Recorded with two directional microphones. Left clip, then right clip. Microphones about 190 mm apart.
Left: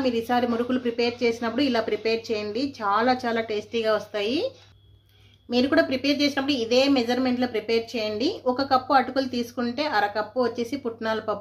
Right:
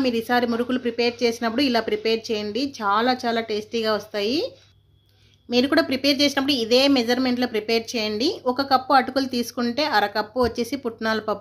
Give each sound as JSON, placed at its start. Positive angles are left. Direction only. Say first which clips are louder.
{"t": 0.0, "sound": "speech", "louder": "right 2 dB", "side_deg": -25}
{"t": 5.5, "sound": "speech", "louder": "right 1 dB", "side_deg": -25}